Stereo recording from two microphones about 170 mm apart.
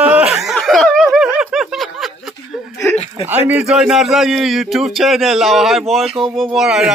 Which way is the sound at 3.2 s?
10° right (ahead or behind).